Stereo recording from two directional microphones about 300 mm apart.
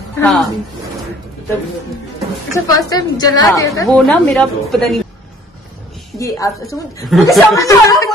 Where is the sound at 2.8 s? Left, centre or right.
Centre.